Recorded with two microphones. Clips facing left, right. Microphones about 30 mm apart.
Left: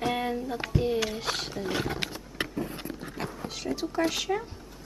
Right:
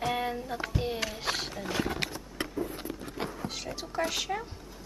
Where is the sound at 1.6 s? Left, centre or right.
Right.